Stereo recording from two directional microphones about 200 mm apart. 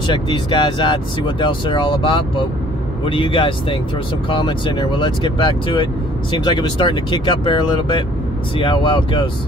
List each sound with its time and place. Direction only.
0.0 s speech: 25° left (ahead or behind)